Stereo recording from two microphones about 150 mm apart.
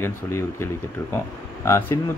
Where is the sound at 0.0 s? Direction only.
15° left (ahead or behind).